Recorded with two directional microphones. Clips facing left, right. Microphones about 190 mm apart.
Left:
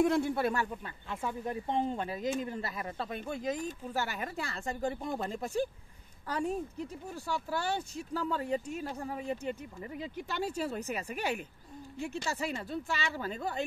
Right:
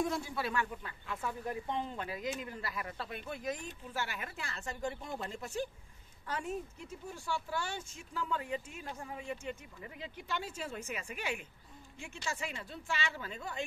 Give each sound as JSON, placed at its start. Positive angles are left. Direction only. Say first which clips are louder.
{"t": 0.0, "sound": "speech", "louder": "left 8 dB", "side_deg": 60}
{"t": 0.8, "sound": "speech", "louder": "left 3 dB", "side_deg": 30}
{"t": 1.8, "sound": "speech", "louder": "left 6 dB", "side_deg": 40}
{"t": 3.6, "sound": "speech", "louder": "left 6 dB", "side_deg": 40}